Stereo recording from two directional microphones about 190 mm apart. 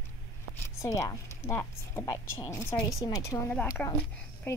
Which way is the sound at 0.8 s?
15° left (ahead or behind).